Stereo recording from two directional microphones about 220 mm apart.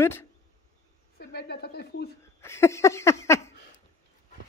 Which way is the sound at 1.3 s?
50° left (ahead or behind).